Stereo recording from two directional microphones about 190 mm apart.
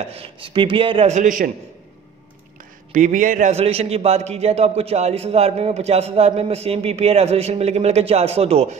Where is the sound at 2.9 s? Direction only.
40° right (ahead or behind).